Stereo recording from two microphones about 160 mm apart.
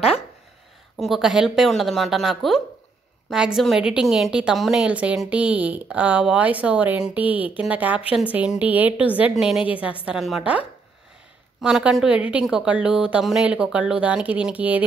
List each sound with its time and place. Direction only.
0.9 s a woman's voice: centre (ahead or behind)